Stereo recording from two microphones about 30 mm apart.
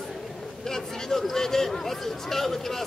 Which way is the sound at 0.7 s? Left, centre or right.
Centre.